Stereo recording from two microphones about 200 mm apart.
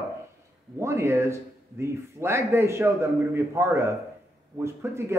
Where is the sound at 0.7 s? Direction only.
15° right (ahead or behind).